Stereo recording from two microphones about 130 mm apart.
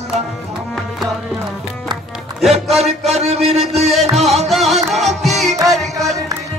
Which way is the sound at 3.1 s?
55° right (ahead or behind).